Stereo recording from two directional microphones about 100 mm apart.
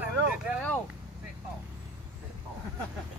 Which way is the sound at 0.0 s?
15° right (ahead or behind).